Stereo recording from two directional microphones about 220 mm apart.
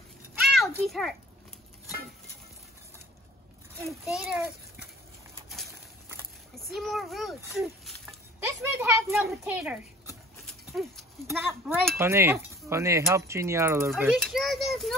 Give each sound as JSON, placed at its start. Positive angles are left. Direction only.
{"t": 0.5, "sound": "children playing", "side_deg": 0}
{"t": 4.0, "sound": "a child's voice", "side_deg": 0}
{"t": 6.5, "sound": "a child's voice", "side_deg": 0}
{"t": 7.5, "sound": "a sound", "side_deg": 0}
{"t": 8.7, "sound": "a child's voice", "side_deg": -10}